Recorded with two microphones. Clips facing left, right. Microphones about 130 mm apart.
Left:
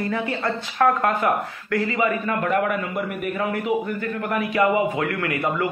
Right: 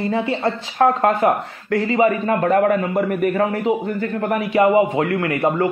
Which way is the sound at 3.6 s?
30° right (ahead or behind).